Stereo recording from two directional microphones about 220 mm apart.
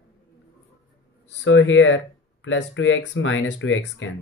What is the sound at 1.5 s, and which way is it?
A man's voice, 55° left (ahead or behind).